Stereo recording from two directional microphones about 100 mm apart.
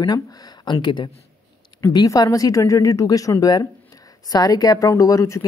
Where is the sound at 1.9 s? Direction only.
35° left (ahead or behind).